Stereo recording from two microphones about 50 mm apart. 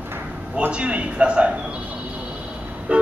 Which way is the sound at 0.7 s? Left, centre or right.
Right.